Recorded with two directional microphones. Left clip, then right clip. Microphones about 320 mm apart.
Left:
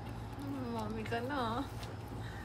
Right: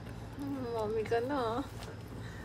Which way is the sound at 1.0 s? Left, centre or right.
Right.